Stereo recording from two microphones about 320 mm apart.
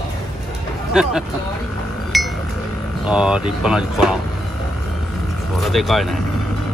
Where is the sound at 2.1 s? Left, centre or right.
Centre.